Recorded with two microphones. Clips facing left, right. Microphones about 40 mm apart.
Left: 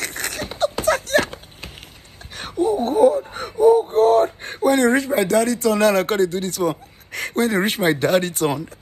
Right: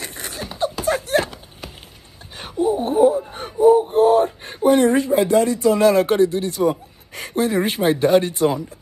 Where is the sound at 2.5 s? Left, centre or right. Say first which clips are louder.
Even; right.